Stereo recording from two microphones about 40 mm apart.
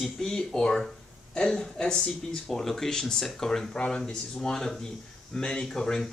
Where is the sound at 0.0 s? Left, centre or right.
Centre.